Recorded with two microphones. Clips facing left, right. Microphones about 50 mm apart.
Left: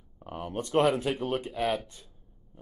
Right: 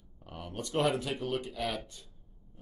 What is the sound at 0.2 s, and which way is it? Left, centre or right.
Speech, left.